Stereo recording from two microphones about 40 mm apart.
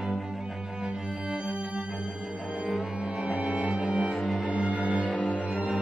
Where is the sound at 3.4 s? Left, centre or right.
Centre.